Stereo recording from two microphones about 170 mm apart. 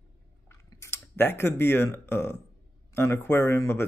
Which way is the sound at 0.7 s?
15° left (ahead or behind).